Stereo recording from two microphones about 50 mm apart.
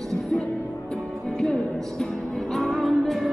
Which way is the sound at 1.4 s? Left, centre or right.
Centre.